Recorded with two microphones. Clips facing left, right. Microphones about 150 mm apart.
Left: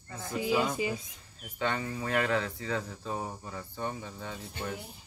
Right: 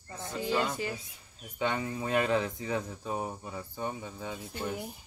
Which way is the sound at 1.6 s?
15° right (ahead or behind).